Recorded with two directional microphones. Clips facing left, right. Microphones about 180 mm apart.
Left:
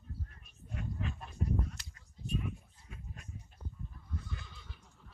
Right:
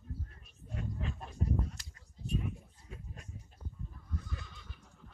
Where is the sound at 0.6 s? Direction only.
35° right (ahead or behind).